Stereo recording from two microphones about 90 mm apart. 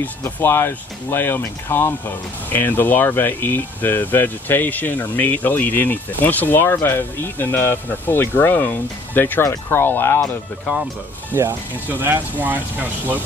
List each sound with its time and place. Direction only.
0.2 s speech: 30° left (ahead or behind)
11.9 s speech: 20° right (ahead or behind)